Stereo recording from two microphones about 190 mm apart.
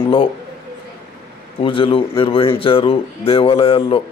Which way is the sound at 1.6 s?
30° left (ahead or behind).